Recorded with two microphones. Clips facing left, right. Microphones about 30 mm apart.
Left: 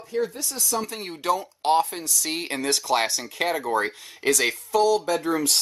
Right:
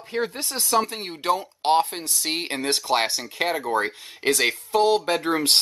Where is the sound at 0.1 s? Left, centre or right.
Right.